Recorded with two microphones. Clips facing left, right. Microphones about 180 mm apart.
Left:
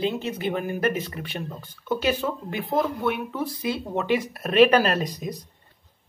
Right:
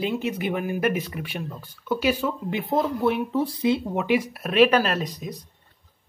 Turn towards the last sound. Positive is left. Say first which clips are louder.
# left 2 dB
turn(degrees=0)  # may be behind; listen again after turning